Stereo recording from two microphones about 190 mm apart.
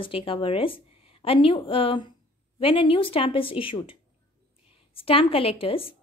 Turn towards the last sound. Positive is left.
turn(degrees=30)  # may be behind; listen again after turning